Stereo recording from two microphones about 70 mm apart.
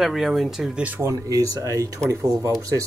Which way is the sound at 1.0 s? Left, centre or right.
Right.